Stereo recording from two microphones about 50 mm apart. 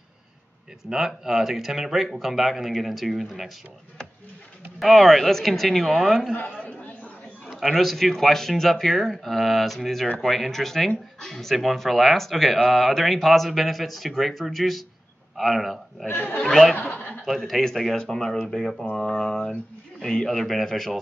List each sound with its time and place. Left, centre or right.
0.8 s speech: centre
4.7 s speech: centre
7.6 s speech: centre
16.1 s speech: left
16.4 s speech: centre
17.9 s speech: centre